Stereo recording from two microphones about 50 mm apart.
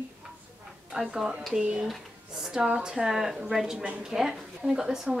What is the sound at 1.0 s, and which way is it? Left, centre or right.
Speech, centre.